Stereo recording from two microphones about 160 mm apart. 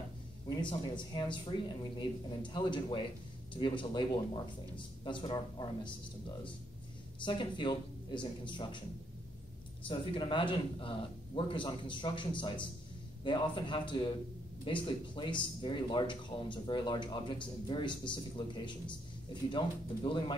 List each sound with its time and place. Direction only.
0.5 s speech: 30° left (ahead or behind)
9.8 s speech: 30° left (ahead or behind)